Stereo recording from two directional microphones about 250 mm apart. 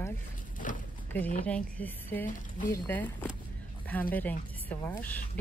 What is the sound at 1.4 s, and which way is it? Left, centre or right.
Speech, centre.